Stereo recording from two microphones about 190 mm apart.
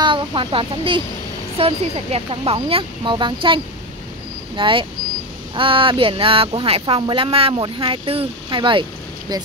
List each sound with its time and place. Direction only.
0.0 s speech: 25° right (ahead or behind)